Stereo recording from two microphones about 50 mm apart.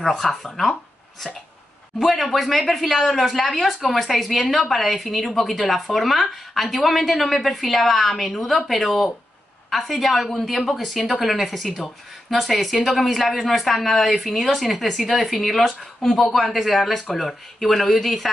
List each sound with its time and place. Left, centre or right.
0.0 s speech: centre
2.0 s speech: centre